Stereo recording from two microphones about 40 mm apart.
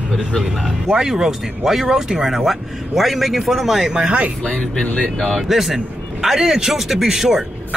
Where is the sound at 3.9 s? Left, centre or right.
Right.